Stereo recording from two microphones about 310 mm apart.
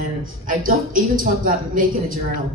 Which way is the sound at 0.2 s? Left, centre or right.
Right.